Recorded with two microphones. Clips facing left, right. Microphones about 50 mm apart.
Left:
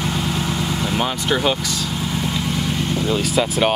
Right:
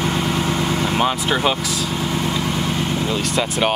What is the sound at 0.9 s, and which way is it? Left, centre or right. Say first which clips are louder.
Speech: even; centre.